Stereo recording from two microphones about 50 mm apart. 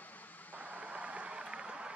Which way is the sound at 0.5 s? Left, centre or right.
Right.